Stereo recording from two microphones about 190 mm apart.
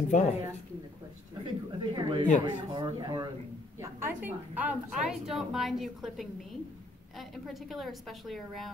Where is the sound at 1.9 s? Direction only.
25° right (ahead or behind).